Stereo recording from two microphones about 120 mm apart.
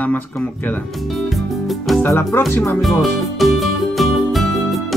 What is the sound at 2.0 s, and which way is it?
Speech, 20° left (ahead or behind).